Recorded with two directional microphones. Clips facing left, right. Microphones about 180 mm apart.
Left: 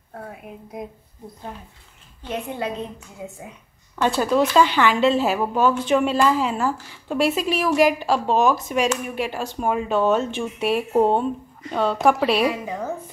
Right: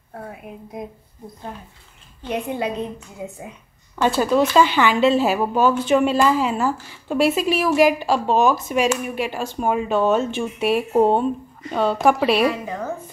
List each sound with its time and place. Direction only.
2.2 s a woman's voice: 15° right (ahead or behind)
4.0 s speech: centre (ahead or behind)
12.4 s a woman's voice: 10° left (ahead or behind)